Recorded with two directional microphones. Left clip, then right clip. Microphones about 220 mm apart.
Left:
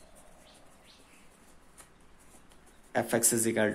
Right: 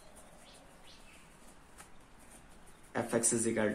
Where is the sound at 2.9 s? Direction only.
35° left (ahead or behind).